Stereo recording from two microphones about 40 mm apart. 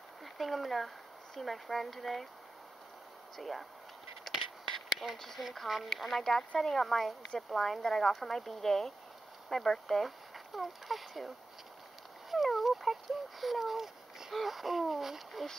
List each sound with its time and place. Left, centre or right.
0.2 s speech: centre
3.3 s speech: centre
4.3 s a sound: centre
5.1 s speech: centre